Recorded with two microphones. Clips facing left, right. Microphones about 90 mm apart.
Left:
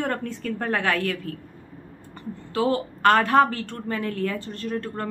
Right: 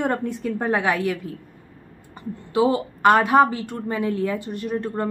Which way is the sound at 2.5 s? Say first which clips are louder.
Right 4 dB; 15° right (ahead or behind).